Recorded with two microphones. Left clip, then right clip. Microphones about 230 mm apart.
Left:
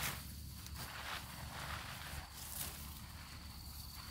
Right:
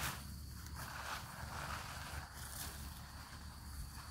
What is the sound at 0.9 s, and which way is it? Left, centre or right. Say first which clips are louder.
Vehicle: even; right.